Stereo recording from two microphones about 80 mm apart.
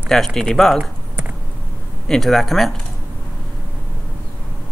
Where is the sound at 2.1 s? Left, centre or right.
Centre.